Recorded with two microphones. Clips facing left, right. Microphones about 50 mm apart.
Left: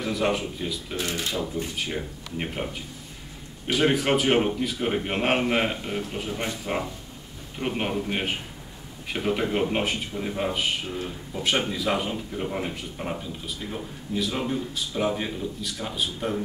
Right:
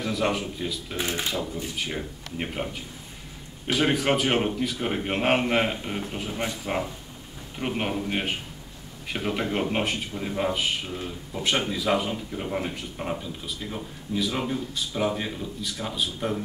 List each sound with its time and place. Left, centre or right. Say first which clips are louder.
0.0 s speech: left 1 dB; centre
0.9 s speech: right 1 dB; right
1.4 s speech: left 2 dB; centre